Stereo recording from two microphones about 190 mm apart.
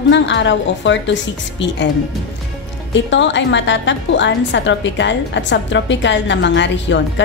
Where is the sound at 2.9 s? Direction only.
70° left (ahead or behind).